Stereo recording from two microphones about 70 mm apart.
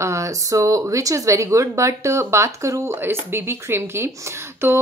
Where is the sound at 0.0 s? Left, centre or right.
Right.